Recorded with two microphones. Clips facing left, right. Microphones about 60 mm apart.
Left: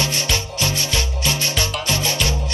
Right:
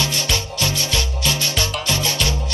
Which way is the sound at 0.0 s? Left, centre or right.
Left.